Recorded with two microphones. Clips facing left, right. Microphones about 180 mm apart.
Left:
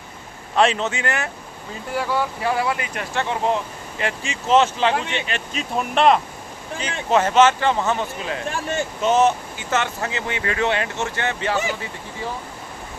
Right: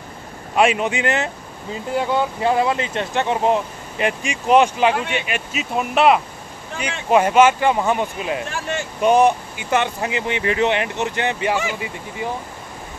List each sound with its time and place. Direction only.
0.6 s speech: 10° right (ahead or behind)